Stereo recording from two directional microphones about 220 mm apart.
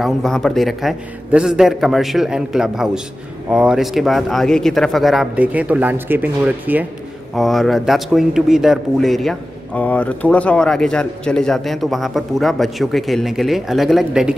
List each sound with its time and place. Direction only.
0.0 s speech: centre (ahead or behind)